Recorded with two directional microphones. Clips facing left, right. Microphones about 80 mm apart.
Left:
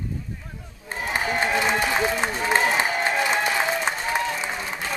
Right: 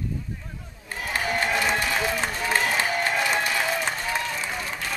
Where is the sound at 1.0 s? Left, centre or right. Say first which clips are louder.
Left 2 dB; left.